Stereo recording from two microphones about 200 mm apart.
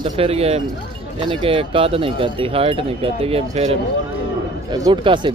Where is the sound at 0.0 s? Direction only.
30° right (ahead or behind).